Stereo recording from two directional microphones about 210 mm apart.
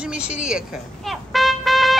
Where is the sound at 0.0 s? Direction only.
5° right (ahead or behind).